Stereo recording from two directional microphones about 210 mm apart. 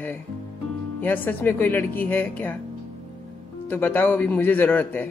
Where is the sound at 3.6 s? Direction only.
10° left (ahead or behind).